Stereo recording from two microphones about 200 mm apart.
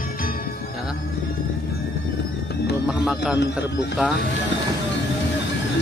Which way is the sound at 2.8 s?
5° right (ahead or behind).